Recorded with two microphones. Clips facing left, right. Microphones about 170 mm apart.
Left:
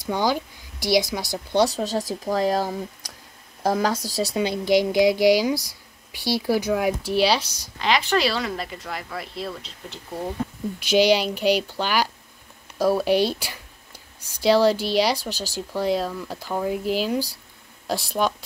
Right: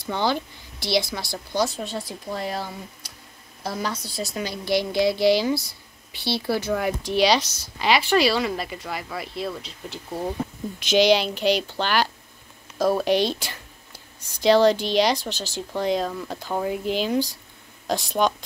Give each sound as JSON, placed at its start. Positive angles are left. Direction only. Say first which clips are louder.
{"t": 0.0, "sound": "a woman's voice", "louder": "left 1 dB", "side_deg": 10}
{"t": 1.7, "sound": "a woman's voice", "louder": "left 6 dB", "side_deg": 35}
{"t": 4.4, "sound": "speech", "louder": "left 4 dB", "side_deg": 20}
{"t": 7.8, "sound": "speech", "louder": "right 2 dB", "side_deg": -5}
{"t": 10.9, "sound": "speech", "louder": "even", "side_deg": 10}